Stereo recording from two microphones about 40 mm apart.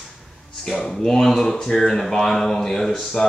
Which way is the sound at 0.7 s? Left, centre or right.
Centre.